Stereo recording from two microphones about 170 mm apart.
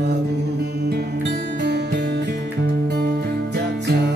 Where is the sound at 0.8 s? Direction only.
75° right (ahead or behind).